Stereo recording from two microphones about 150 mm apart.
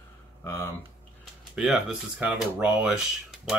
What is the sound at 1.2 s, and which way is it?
Speech, centre (ahead or behind).